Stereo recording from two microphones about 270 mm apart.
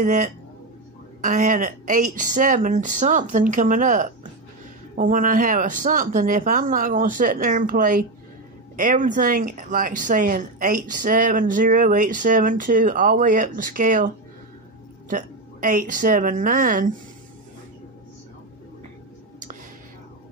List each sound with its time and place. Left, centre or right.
0.0 s a woman's voice: right